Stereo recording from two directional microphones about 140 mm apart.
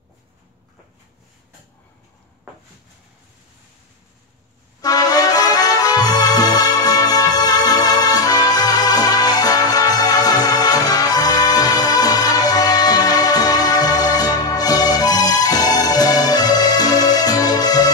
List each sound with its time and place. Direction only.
4.8 s music: 25° left (ahead or behind)